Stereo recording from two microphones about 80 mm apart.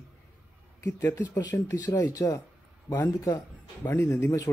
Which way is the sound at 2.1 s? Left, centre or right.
Left.